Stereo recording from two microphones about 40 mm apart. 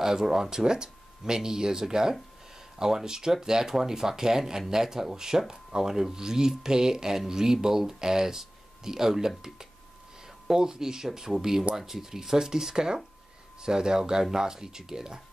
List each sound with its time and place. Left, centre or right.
0.0 s speech: centre
10.5 s speech: centre